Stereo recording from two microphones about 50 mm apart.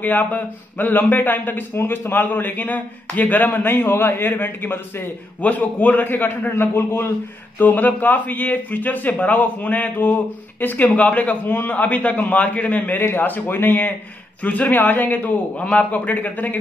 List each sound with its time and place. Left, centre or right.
0.0 s a man's voice: left
5.4 s a man's voice: left
6.5 s speech: left
7.5 s a man's voice: left
13.0 s speech: left
14.4 s a man's voice: left